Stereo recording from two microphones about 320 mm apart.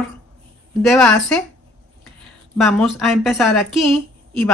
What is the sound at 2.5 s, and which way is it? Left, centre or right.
Speech, centre.